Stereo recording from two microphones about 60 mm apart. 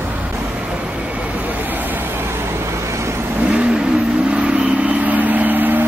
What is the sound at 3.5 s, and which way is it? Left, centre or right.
Vehicle, centre.